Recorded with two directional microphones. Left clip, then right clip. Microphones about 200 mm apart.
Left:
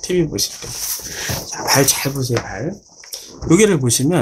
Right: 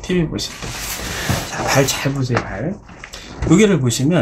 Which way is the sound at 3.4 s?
45° left (ahead or behind).